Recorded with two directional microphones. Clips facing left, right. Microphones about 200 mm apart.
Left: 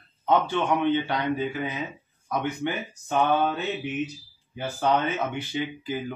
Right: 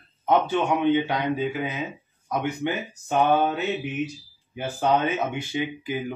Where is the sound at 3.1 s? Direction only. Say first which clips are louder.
Right 2 dB; 20° right (ahead or behind).